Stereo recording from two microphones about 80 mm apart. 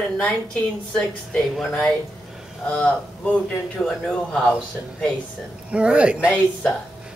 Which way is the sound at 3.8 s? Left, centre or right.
Centre.